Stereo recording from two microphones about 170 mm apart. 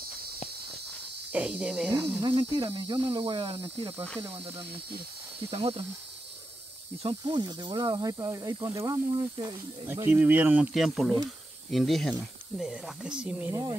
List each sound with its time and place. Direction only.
1.3 s speech: 5° right (ahead or behind)
2.2 s speech: 30° right (ahead or behind)
7.0 s speech: 30° right (ahead or behind)
9.8 s speech: 15° right (ahead or behind)
13.5 s speech: 25° right (ahead or behind)